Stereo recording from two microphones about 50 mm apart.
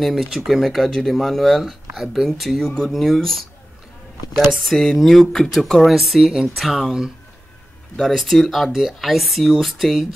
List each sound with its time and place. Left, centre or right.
0.0 s speech: centre
4.6 s speech: centre
7.9 s speech: centre